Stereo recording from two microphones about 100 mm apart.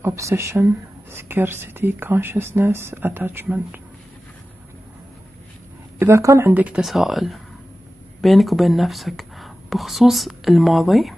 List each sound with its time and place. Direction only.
0.0 s speech: 30° right (ahead or behind)
5.9 s speech: 25° right (ahead or behind)
6.5 s speech: 15° right (ahead or behind)
6.8 s speech: centre (ahead or behind)